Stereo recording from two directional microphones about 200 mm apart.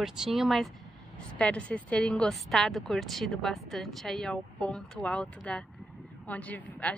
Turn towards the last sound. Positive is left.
turn(degrees=5)  # may be behind; listen again after turning